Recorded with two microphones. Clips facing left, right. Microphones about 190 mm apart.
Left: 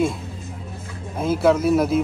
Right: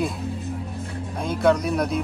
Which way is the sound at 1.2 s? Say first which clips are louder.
Left 3 dB; 5° left (ahead or behind).